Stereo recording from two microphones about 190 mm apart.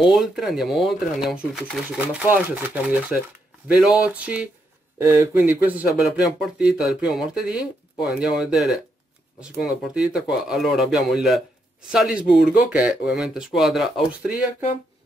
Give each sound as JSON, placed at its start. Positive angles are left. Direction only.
{"t": 0.0, "sound": "speech", "side_deg": 0}
{"t": 2.0, "sound": "speech", "side_deg": -10}